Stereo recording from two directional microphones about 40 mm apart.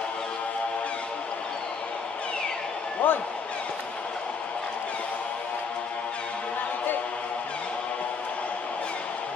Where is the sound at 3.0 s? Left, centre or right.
Left.